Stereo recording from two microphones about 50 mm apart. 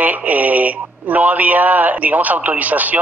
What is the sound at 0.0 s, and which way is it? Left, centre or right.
Speech, right.